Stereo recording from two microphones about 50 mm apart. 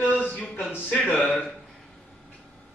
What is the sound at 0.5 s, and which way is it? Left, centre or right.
Speech, left.